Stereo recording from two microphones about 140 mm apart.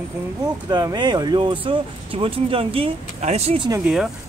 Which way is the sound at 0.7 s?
30° right (ahead or behind).